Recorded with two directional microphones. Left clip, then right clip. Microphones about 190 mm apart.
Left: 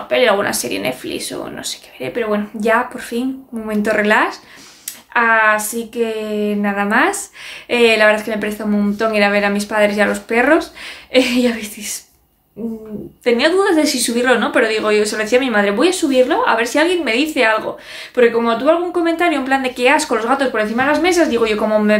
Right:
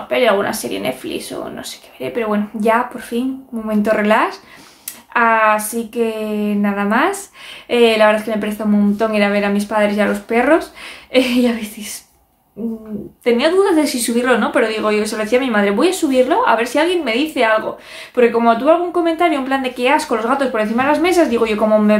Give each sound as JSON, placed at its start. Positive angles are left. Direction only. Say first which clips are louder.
{"t": 0.1, "sound": "speech", "louder": "left 1 dB", "side_deg": 0}
{"t": 13.2, "sound": "speech", "louder": "even", "side_deg": 0}